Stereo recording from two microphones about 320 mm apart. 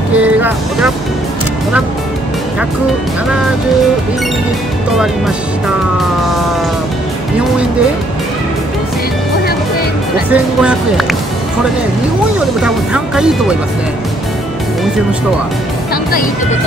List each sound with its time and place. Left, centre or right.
0.2 s speech: centre
4.9 s speech: centre
10.3 s speech: centre
12.6 s speech: centre
15.9 s speech: left